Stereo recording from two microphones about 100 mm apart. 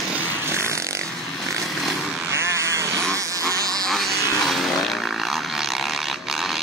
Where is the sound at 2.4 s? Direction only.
30° right (ahead or behind).